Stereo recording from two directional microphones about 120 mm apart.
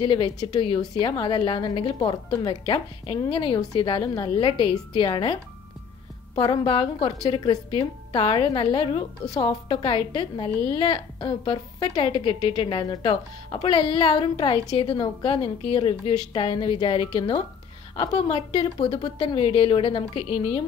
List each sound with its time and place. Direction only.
0.0 s a woman's voice: 45° left (ahead or behind)
0.4 s a woman's voice: 35° left (ahead or behind)
0.7 s a woman's voice: 45° left (ahead or behind)
6.4 s a woman's voice: 40° left (ahead or behind)
9.2 s a woman's voice: 30° left (ahead or behind); by 20.6 s 50° left (ahead or behind)